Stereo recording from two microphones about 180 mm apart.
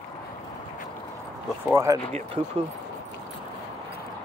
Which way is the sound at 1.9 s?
20° right (ahead or behind).